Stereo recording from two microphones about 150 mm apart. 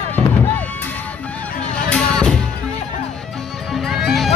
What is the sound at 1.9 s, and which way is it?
Music, 5° left (ahead or behind).